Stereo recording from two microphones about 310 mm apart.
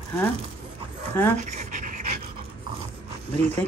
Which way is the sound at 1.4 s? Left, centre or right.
Right.